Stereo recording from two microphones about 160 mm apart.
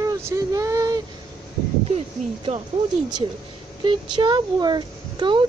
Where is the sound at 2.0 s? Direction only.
40° right (ahead or behind).